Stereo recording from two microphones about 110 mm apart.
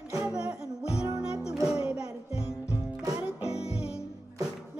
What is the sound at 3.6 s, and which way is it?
Music, 70° left (ahead or behind).